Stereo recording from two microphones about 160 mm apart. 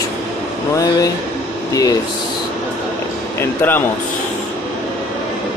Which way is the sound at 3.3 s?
10° left (ahead or behind).